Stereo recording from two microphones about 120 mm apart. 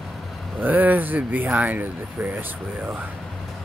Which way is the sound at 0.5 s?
15° right (ahead or behind).